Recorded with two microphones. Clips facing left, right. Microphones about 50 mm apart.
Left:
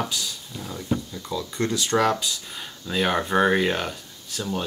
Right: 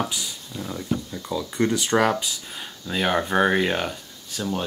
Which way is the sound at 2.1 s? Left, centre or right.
Centre.